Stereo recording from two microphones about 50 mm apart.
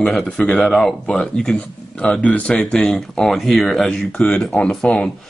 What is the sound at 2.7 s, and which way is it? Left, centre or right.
Speech, centre.